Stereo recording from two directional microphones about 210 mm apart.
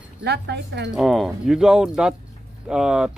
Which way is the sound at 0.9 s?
Centre (ahead or behind).